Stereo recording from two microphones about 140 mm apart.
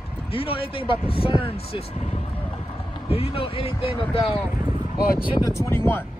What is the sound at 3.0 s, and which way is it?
Speech, 45° left (ahead or behind).